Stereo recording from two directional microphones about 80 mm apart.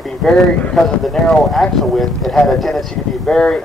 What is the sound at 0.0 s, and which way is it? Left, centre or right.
Speech, centre.